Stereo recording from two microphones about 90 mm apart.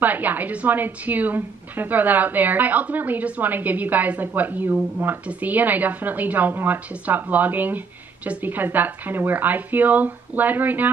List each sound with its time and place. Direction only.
0.0 s a woman's voice: 20° right (ahead or behind)